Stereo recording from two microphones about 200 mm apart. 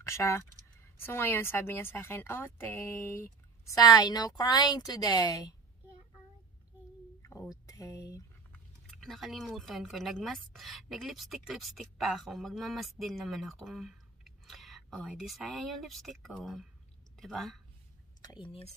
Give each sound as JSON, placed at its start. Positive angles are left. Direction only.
{"t": 0.0, "sound": "speech", "side_deg": 15}
{"t": 7.2, "sound": "a sound", "side_deg": 15}
{"t": 8.5, "sound": "speech", "side_deg": 5}
{"t": 18.2, "sound": "speech", "side_deg": 25}